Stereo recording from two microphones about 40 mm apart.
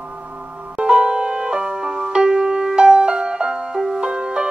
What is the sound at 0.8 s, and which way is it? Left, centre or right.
Music, right.